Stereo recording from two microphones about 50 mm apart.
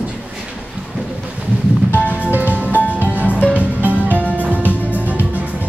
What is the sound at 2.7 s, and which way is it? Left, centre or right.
Music, left.